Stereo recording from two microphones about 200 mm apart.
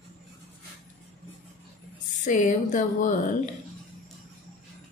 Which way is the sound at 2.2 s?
40° left (ahead or behind).